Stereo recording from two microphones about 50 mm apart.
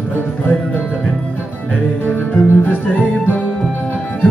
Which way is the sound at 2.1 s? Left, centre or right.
Left.